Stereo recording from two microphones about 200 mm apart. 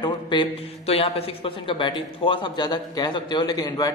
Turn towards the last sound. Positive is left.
turn(degrees=20)  # may be behind; listen again after turning